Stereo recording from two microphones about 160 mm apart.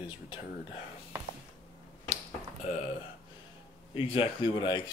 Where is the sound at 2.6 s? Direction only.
45° left (ahead or behind).